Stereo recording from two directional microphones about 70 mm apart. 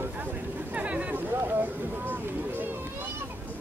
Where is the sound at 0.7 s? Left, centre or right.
Centre.